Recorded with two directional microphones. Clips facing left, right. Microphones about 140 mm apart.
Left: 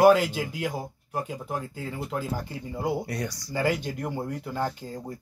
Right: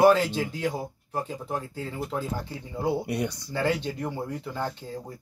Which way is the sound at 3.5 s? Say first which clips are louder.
Even; 10° left (ahead or behind).